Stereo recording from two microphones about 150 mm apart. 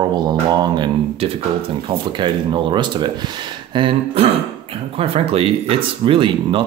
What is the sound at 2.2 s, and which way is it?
Speech, 30° right (ahead or behind).